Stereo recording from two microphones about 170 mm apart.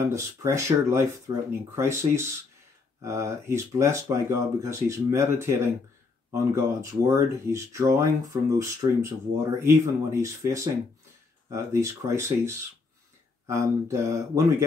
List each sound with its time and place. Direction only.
0.1 s speech: 15° right (ahead or behind)
13.5 s mantra: 20° right (ahead or behind)